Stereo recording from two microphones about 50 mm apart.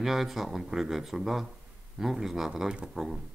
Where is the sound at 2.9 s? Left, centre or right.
Centre.